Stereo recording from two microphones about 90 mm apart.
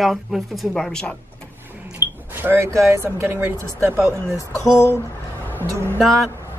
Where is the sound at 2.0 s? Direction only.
25° right (ahead or behind).